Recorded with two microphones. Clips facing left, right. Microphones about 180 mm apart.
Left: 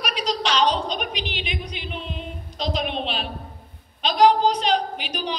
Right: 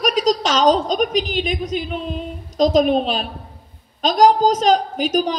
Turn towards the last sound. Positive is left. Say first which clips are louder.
# right 10 dB
turn(degrees=-40)  # may be behind; listen again after turning